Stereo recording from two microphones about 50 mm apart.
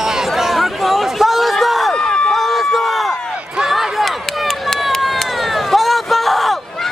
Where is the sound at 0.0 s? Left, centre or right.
Centre.